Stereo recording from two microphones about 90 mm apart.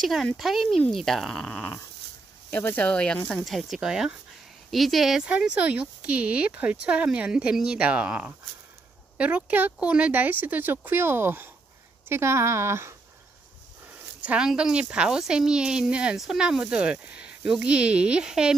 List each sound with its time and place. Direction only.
0.0 s speech: centre (ahead or behind)
3.4 s speech: centre (ahead or behind); by 12.9 s 30° right (ahead or behind)
13.8 s speech: 15° right (ahead or behind)